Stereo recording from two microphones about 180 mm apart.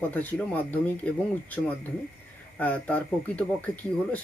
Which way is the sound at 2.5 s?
10° left (ahead or behind).